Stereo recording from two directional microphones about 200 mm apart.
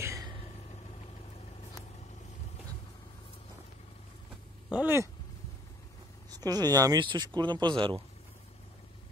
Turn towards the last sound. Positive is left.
turn(degrees=-25)  # may be behind; listen again after turning